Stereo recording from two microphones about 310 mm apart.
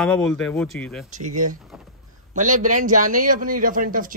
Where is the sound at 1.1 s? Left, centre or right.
Right.